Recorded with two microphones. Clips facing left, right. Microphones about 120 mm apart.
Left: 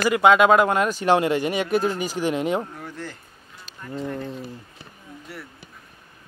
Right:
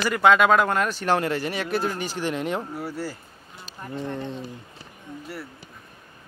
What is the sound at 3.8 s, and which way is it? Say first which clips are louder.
Speech: even; 25° right (ahead or behind).